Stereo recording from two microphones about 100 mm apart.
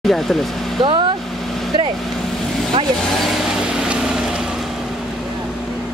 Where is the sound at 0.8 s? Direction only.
55° right (ahead or behind).